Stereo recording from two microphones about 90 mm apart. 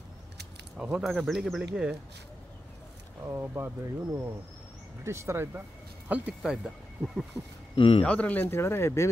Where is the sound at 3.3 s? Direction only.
25° right (ahead or behind).